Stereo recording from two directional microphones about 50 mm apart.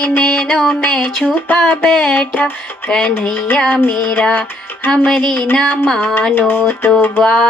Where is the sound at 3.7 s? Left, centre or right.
Left.